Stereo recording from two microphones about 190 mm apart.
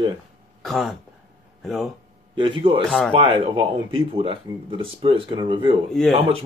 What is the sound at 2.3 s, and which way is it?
Speech, 25° right (ahead or behind).